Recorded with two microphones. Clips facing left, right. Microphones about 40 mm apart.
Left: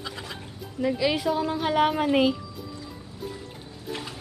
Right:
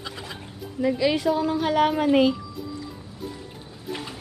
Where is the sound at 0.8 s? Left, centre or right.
Centre.